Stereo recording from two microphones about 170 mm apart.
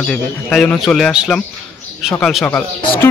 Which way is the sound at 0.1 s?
5° left (ahead or behind).